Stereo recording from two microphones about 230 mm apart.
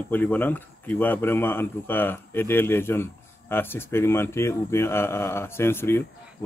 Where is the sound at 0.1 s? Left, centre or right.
Centre.